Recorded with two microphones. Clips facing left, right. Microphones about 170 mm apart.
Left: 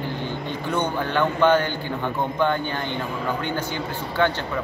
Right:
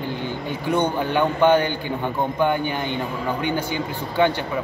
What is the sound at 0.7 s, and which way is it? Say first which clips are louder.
A man's voice: right 4 dB; 15° right (ahead or behind).